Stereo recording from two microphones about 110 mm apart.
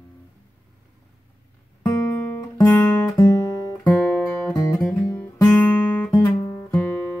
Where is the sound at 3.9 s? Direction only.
15° left (ahead or behind).